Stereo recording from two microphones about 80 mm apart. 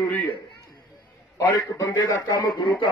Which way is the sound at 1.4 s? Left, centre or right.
Left.